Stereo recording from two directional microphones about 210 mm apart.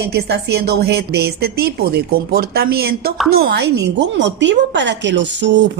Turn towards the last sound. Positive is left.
turn(degrees=-60)  # may be behind; listen again after turning